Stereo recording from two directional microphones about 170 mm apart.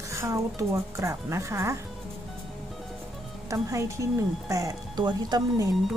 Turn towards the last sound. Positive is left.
turn(degrees=-25)  # may be behind; listen again after turning